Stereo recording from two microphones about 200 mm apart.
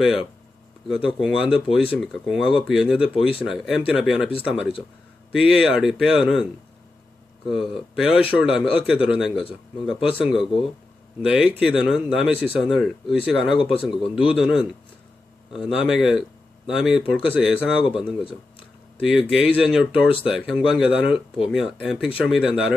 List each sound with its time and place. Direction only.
0.0 s speech: centre (ahead or behind)
9.9 s speech: 25° left (ahead or behind)
10.2 s speech: centre (ahead or behind)
19.0 s speech: centre (ahead or behind)